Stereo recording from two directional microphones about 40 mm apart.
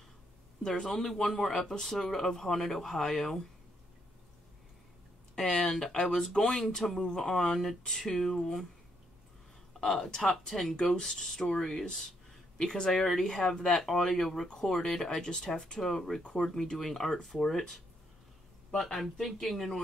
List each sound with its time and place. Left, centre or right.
0.7 s speech: centre
5.3 s speech: centre
9.8 s speech: centre
12.9 s speech: centre
15.2 s speech: centre